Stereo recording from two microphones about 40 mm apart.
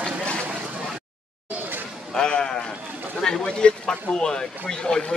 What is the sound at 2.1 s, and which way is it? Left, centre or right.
A man's voice, left.